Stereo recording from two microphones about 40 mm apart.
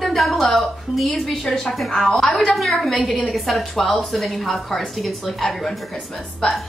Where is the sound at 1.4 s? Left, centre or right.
Centre.